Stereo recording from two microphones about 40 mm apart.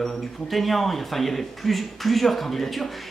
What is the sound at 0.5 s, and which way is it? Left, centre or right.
A man's voice, centre.